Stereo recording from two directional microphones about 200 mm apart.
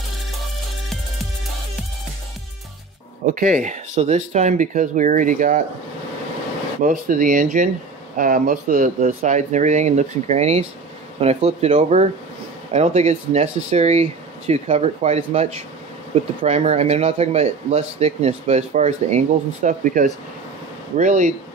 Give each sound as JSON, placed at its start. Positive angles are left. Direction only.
{"t": 3.3, "sound": "speech", "side_deg": -40}
{"t": 6.8, "sound": "speech", "side_deg": -40}